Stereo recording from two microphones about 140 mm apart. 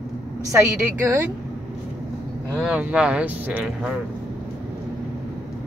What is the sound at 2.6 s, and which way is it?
A man's voice, 10° right (ahead or behind).